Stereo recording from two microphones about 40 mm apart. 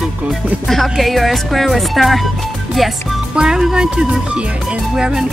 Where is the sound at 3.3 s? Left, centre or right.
Centre.